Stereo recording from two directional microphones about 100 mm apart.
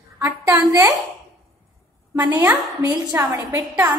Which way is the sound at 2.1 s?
15° right (ahead or behind).